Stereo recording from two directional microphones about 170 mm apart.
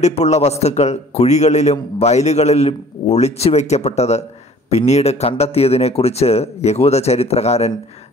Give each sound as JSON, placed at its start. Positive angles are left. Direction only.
{"t": 0.0, "sound": "a man's voice", "side_deg": 40}